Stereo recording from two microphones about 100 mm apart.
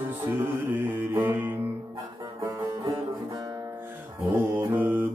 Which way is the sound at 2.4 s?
35° right (ahead or behind).